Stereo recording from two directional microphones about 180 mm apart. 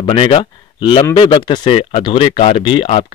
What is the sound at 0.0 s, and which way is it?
Speech, 30° left (ahead or behind).